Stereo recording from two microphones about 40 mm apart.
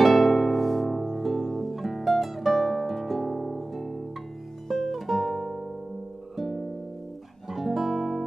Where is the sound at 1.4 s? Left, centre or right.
Centre.